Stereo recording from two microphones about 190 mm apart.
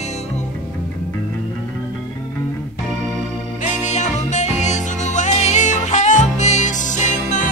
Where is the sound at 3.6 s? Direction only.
40° left (ahead or behind).